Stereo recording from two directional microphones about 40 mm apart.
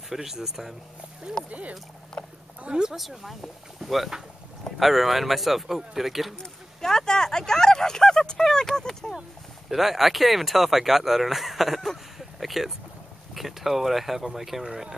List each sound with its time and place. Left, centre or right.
0.1 s speech: centre
1.5 s speech: right
2.7 s speech: centre
3.0 s speech: centre
6.3 s speech: centre
9.7 s speech: centre
12.2 s a sound: centre
13.3 s speech: centre